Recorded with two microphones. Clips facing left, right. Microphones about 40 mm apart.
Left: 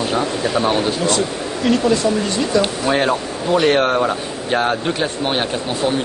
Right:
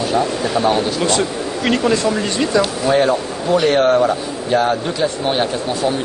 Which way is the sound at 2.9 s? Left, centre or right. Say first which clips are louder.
Right 2 dB; left.